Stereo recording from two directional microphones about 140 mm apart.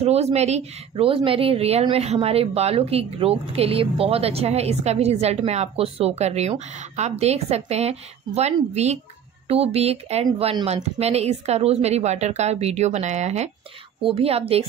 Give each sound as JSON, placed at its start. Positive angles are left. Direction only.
{"t": 0.0, "sound": "a woman's voice", "side_deg": -50}
{"t": 14.0, "sound": "a woman's voice", "side_deg": -45}